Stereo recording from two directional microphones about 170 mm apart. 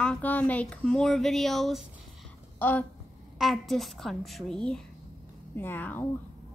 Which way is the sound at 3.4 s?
Centre (ahead or behind).